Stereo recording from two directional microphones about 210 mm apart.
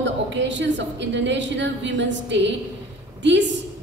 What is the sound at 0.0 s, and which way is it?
A woman's voice, 60° right (ahead or behind).